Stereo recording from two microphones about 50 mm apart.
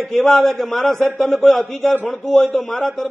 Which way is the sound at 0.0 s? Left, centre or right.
Centre.